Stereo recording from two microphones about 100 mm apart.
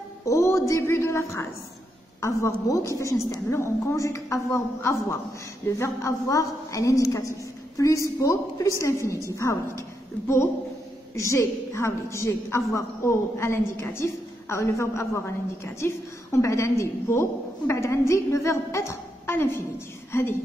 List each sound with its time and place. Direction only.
0.2 s a woman's voice: 30° left (ahead or behind)